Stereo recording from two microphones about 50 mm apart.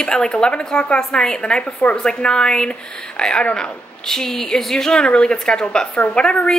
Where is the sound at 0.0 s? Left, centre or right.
Centre.